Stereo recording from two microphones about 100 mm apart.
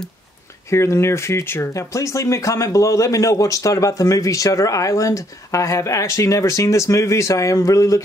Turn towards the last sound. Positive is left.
turn(degrees=35)  # may be behind; listen again after turning